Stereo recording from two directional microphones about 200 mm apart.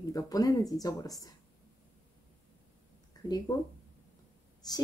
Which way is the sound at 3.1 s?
20° left (ahead or behind).